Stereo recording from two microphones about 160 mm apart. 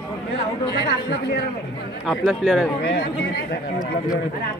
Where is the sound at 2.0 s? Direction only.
Centre (ahead or behind).